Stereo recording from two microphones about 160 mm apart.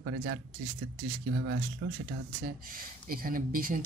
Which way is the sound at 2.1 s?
65° right (ahead or behind).